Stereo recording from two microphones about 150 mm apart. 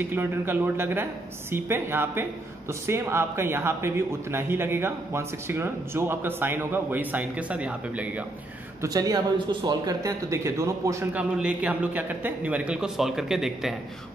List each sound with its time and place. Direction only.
0.0 s a man's voice: 15° right (ahead or behind)
8.8 s speech: 25° right (ahead or behind)
11.3 s a man's voice: 10° right (ahead or behind)